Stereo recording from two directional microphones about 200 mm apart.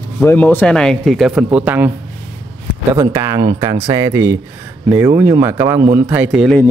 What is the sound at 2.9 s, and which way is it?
Speech, 15° right (ahead or behind).